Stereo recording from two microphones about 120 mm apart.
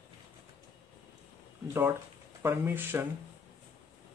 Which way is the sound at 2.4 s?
20° right (ahead or behind).